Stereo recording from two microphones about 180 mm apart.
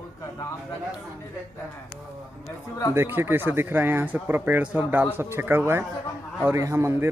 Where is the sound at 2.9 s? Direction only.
15° right (ahead or behind).